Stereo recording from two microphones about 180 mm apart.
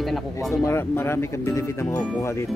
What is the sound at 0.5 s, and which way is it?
Speech, 15° left (ahead or behind).